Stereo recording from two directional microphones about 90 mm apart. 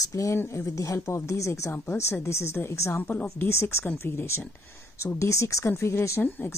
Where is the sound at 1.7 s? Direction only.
25° left (ahead or behind).